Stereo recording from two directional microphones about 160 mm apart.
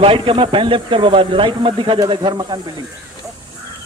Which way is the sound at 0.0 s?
30° right (ahead or behind).